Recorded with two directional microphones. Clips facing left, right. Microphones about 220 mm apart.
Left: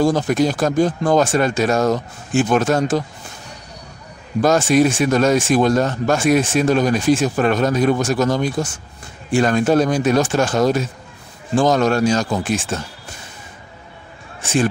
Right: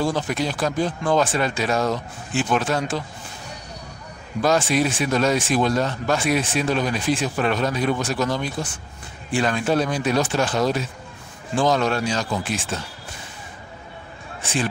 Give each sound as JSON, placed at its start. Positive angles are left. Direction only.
{"t": 0.0, "sound": "speech", "side_deg": 45}
{"t": 4.4, "sound": "speech", "side_deg": 45}
{"t": 14.4, "sound": "speech", "side_deg": 45}